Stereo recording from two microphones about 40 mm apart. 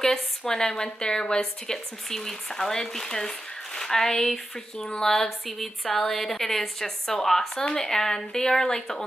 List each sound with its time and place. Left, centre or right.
0.5 s speech: centre